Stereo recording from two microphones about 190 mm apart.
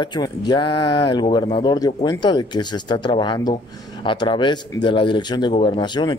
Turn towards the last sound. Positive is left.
turn(degrees=25)  # may be behind; listen again after turning